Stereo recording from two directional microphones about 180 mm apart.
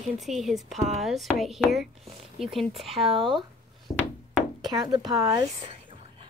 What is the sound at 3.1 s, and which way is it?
Speech, 25° right (ahead or behind).